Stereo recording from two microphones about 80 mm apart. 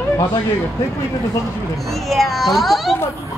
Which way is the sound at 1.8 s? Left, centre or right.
Centre.